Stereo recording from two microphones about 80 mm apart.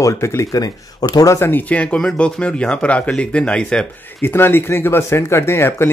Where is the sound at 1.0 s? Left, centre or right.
Left.